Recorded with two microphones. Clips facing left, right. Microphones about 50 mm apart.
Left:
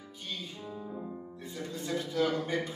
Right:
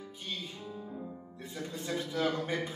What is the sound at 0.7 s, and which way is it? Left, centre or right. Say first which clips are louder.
Music: left 2 dB; centre.